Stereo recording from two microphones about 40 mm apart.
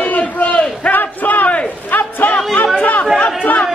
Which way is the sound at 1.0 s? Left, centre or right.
Left.